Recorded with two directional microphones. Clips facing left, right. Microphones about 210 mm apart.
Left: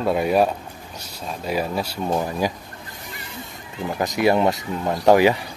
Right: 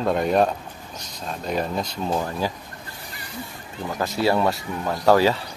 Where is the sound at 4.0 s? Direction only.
15° left (ahead or behind).